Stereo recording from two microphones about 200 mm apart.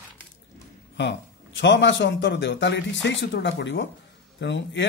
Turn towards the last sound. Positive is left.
turn(degrees=60)  # may be behind; listen again after turning